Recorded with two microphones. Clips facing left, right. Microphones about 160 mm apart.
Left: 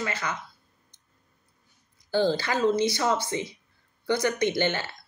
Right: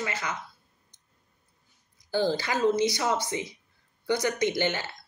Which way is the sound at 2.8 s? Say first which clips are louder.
Left 1 dB; 20° right (ahead or behind).